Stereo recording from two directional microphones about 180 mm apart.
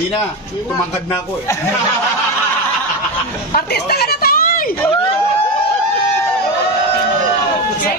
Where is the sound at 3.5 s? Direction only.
60° left (ahead or behind).